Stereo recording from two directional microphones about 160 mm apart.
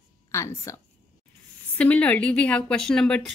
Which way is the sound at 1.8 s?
10° left (ahead or behind).